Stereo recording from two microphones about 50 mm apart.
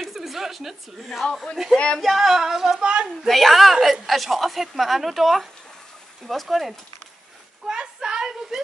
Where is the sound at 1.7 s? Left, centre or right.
Left.